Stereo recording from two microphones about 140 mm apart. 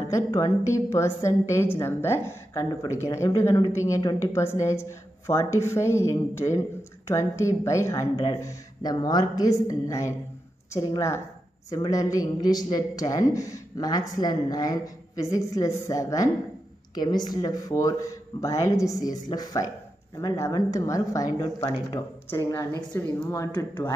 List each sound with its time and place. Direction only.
0.1 s a woman's voice: 25° left (ahead or behind)